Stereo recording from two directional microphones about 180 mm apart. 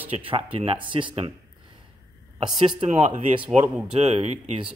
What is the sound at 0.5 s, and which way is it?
Speech, 30° right (ahead or behind).